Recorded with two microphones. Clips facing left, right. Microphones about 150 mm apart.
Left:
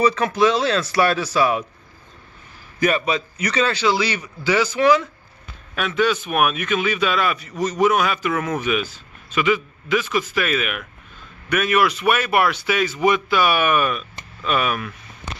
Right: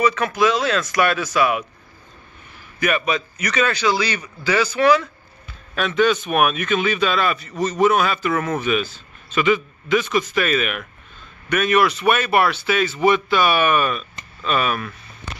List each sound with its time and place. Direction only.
0.0 s speech: 30° left (ahead or behind)
2.8 s a man's voice: 25° left (ahead or behind)
5.8 s a man's voice: 5° left (ahead or behind)